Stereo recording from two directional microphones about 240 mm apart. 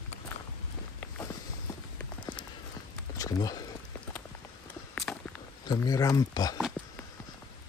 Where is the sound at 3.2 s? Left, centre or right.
Centre.